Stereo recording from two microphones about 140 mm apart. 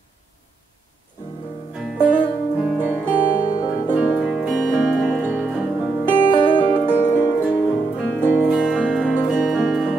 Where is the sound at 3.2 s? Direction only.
25° left (ahead or behind).